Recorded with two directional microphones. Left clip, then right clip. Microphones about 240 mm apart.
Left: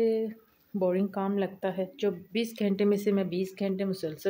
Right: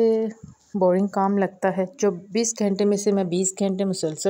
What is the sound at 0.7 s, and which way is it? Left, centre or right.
Speech, right.